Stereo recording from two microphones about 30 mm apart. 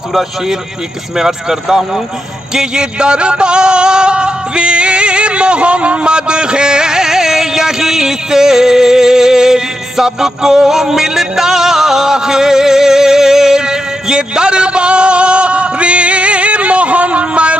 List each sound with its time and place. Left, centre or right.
1.1 s speech: centre
2.5 s music: right